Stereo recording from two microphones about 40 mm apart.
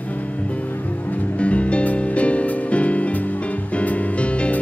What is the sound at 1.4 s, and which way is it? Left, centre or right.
Music, left.